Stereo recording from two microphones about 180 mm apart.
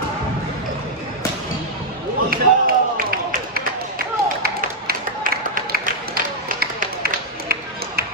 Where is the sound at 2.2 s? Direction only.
55° right (ahead or behind).